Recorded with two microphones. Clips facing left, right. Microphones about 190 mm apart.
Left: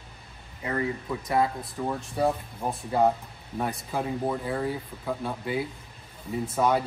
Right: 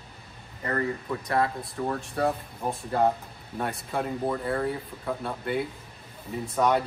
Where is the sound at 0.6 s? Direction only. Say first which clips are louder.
Even; 10° left (ahead or behind).